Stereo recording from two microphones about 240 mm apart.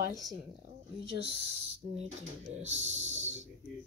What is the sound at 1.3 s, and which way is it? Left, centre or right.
Speech, left.